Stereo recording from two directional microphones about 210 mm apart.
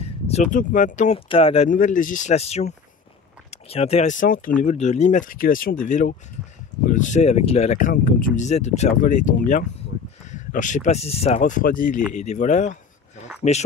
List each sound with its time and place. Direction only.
0.0 s speech: 30° left (ahead or behind)